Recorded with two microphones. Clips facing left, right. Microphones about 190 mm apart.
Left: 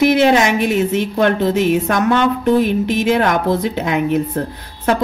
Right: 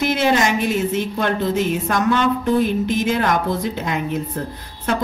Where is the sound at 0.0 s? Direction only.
60° left (ahead or behind).